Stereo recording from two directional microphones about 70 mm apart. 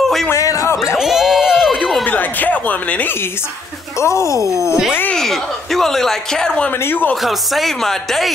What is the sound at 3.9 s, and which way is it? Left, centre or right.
Speech, left.